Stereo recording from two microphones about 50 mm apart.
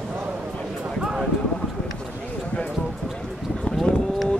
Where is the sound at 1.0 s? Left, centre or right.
Centre.